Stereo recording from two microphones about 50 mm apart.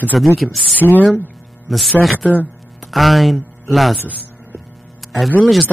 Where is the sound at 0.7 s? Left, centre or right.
Left.